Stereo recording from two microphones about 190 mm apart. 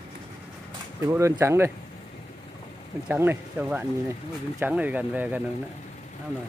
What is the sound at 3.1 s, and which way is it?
Speech, 10° right (ahead or behind).